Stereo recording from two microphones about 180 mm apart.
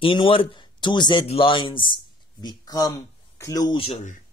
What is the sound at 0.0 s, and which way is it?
Speech, 30° left (ahead or behind).